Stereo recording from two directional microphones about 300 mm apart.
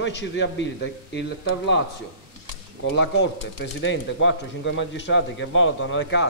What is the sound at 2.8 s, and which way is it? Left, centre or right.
Speech, left.